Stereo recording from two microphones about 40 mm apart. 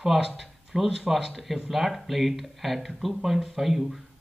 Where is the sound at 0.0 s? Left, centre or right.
Centre.